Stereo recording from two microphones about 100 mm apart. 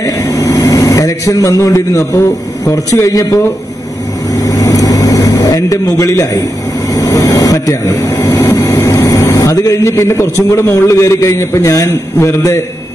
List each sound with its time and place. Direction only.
0.0 s speech: 35° left (ahead or behind)
4.4 s vehicle: 35° left (ahead or behind)
8.5 s speech: 35° left (ahead or behind)